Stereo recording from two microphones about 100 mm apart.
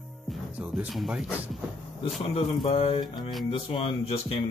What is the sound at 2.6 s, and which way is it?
Speech, 70° left (ahead or behind).